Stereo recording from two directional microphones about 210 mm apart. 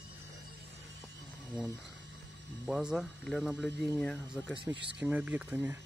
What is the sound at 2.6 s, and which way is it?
Speech, 5° right (ahead or behind).